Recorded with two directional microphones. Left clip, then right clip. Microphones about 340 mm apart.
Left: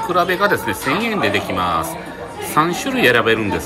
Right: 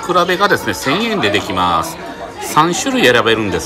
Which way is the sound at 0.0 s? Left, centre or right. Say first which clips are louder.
Right 3 dB; centre.